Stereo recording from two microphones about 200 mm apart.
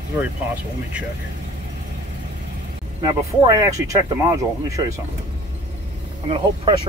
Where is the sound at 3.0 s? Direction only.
20° right (ahead or behind).